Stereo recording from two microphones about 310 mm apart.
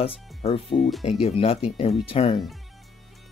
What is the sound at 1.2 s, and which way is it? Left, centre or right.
Speech, centre.